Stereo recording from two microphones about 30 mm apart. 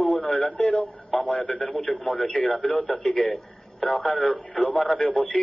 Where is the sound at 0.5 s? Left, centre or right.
Left.